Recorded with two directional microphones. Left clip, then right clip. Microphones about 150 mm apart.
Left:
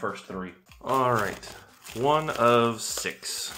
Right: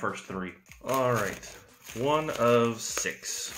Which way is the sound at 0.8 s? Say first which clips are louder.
Left 3 dB; 25° left (ahead or behind).